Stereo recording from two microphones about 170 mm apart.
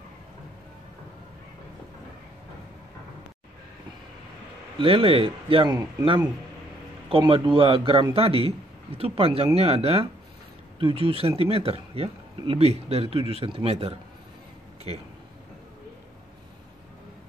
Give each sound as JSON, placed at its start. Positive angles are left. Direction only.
{"t": 4.7, "sound": "speech", "side_deg": -30}